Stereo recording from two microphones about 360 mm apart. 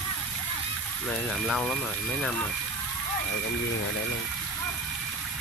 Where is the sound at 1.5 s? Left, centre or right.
Centre.